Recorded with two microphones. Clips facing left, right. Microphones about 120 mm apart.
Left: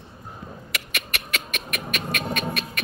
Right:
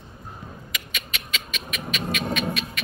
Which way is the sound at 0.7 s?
65° left (ahead or behind).